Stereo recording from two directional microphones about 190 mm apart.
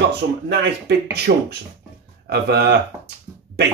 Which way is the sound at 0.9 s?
60° right (ahead or behind).